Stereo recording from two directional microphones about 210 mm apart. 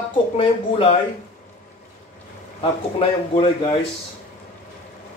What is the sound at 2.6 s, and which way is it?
Speech, 25° left (ahead or behind).